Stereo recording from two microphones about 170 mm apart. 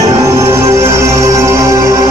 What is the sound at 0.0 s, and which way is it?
Music, 20° right (ahead or behind).